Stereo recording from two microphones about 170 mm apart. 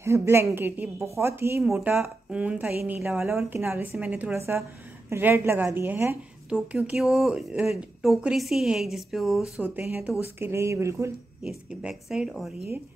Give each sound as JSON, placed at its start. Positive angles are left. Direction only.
{"t": 0.0, "sound": "a woman's voice", "side_deg": -15}
{"t": 11.4, "sound": "a woman's voice", "side_deg": -5}